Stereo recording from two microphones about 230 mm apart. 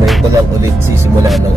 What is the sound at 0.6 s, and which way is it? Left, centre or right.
Music, centre.